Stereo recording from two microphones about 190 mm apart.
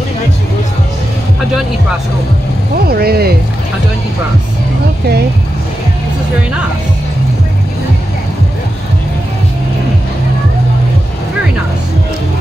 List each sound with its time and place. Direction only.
2.9 s speech: 55° right (ahead or behind)